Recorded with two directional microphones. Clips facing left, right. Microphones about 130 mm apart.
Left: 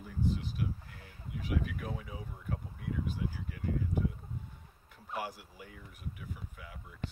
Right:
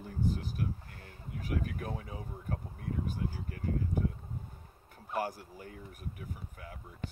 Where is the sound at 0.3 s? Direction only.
45° right (ahead or behind).